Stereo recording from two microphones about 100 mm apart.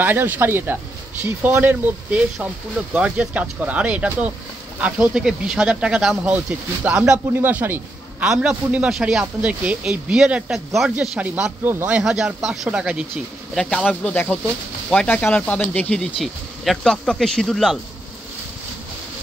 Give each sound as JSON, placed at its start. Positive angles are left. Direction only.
{"t": 0.0, "sound": "a man's voice", "side_deg": -20}
{"t": 7.4, "sound": "speech", "side_deg": -20}
{"t": 8.2, "sound": "a man's voice", "side_deg": -10}
{"t": 11.0, "sound": "a man's voice", "side_deg": -15}
{"t": 13.1, "sound": "speech", "side_deg": 10}
{"t": 14.1, "sound": "speech", "side_deg": 20}